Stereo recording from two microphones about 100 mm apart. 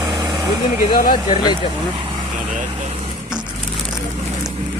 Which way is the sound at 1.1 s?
50° left (ahead or behind).